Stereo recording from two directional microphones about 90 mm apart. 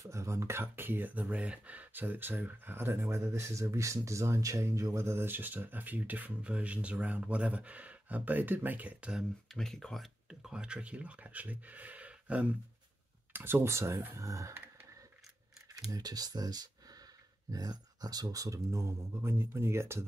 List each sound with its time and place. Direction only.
0.0 s speech: 35° right (ahead or behind); by 9.2 s 15° right (ahead or behind)
9.5 s speech: 5° left (ahead or behind)
10.4 s speech: 10° right (ahead or behind); by 14.5 s 35° right (ahead or behind)
15.9 s speech: 45° right (ahead or behind); by 20.1 s 30° right (ahead or behind)